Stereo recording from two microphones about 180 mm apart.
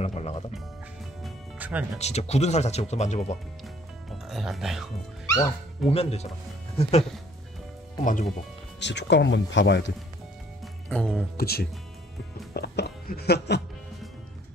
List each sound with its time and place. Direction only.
0.0 s speech: 35° left (ahead or behind)
1.2 s music: 10° right (ahead or behind)
2.0 s speech: 35° left (ahead or behind)
4.3 s speech: centre (ahead or behind)
5.9 s speech: 35° left (ahead or behind)
8.0 s speech: 45° left (ahead or behind)
8.7 s speech: 75° left (ahead or behind)
10.6 s music: 5° left (ahead or behind)
11.3 s speech: 60° left (ahead or behind)
12.5 s music: 65° left (ahead or behind)